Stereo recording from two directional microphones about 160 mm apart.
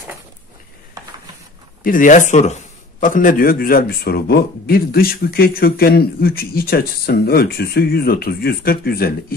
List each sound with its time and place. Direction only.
1.8 s speech: 60° left (ahead or behind)